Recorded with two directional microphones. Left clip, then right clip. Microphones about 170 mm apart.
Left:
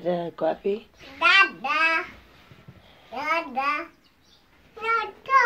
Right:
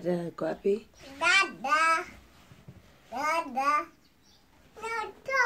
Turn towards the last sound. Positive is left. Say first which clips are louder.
# left 8 dB
turn(degrees=-30)  # may be behind; listen again after turning